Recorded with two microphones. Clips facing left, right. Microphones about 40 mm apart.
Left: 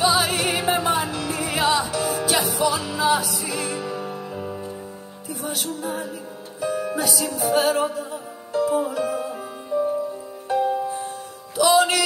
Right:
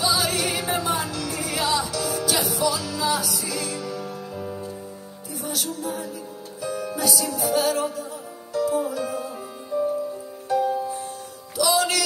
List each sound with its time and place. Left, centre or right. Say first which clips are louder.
0.0 s music: left 3 dB; left
5.4 s music: left 1 dB; left
10.5 s music: left 1 dB; left